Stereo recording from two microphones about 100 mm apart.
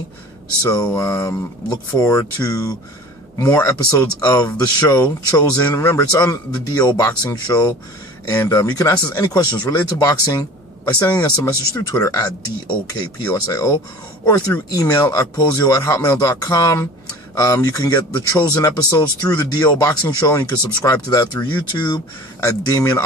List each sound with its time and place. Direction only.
0.6 s speech: 35° left (ahead or behind)
22.4 s speech: 30° left (ahead or behind)